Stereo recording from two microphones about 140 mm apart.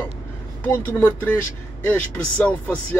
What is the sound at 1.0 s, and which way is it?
Speech, 15° left (ahead or behind).